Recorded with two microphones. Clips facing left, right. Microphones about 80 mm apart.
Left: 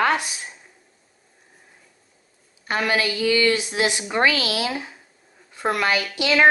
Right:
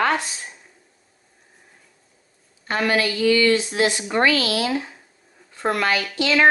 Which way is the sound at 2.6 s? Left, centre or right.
Centre.